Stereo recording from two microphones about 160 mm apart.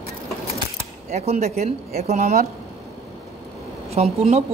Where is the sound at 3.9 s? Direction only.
40° right (ahead or behind).